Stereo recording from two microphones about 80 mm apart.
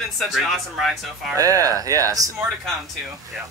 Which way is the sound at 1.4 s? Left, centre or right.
Right.